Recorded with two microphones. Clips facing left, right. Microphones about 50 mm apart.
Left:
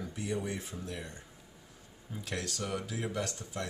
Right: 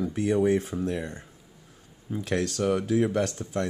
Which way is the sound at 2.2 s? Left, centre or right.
Right.